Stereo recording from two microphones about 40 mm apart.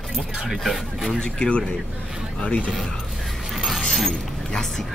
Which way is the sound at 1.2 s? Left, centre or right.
Left.